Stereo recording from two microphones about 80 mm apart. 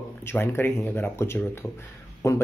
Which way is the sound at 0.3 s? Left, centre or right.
Left.